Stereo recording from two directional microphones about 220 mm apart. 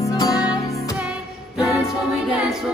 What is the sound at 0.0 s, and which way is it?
Music, 15° left (ahead or behind).